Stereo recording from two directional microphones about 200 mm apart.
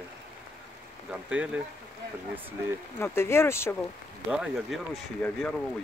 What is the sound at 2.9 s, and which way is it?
Speech, 10° left (ahead or behind).